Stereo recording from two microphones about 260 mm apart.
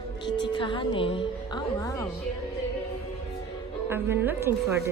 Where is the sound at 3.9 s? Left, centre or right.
Centre.